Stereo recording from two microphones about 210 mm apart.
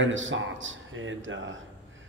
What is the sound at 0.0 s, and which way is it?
Speech, 65° right (ahead or behind).